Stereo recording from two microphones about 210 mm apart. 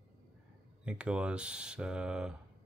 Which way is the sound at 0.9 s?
5° right (ahead or behind).